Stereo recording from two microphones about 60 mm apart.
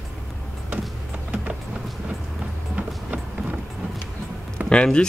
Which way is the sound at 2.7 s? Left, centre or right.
Right.